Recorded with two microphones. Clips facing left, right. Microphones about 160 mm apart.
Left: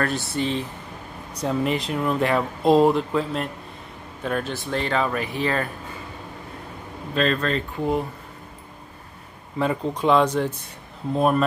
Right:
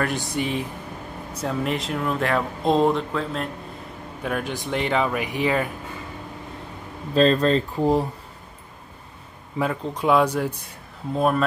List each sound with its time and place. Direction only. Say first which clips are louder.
0.0 s speech: left 1 dB; 15° right (ahead or behind)
1.3 s speech: left 2 dB; centre (ahead or behind)
4.2 s speech: left 1 dB; 10° right (ahead or behind)
7.4 s speech: right 4 dB; 35° right (ahead or behind)
9.7 s speech: left 1 dB; 5° right (ahead or behind)
11.1 s speech: left 1 dB; centre (ahead or behind)